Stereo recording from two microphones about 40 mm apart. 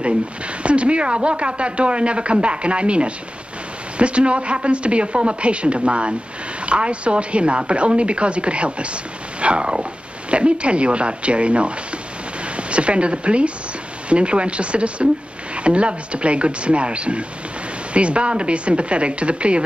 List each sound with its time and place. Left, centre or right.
0.7 s speech: right
9.4 s a sound: right
10.3 s speech: right